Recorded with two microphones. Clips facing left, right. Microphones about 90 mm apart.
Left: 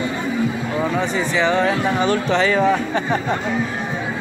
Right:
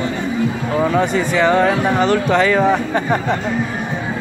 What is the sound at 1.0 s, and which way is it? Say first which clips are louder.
Speech: right 4 dB; 55° right (ahead or behind).